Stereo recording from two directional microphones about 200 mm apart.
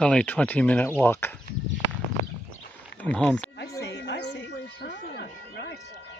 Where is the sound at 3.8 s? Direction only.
60° left (ahead or behind).